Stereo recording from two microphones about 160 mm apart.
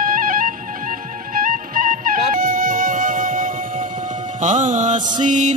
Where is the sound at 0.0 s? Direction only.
60° right (ahead or behind).